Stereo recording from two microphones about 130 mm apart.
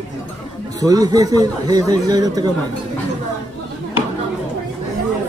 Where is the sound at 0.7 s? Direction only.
30° right (ahead or behind).